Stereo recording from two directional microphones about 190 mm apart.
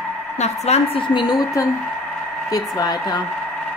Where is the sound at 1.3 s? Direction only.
15° left (ahead or behind).